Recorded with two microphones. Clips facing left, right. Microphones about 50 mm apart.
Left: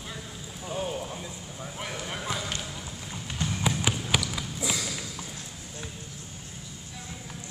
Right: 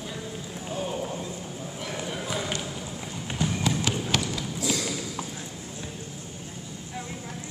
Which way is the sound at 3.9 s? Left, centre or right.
Centre.